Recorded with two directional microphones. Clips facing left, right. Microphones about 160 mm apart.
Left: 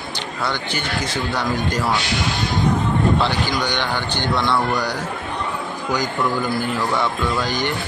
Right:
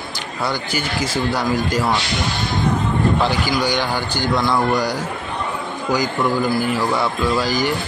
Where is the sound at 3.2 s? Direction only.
10° right (ahead or behind).